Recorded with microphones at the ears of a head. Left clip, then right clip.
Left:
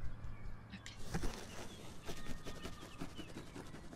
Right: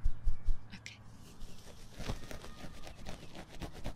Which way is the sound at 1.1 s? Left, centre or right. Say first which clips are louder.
Left 11 dB; left.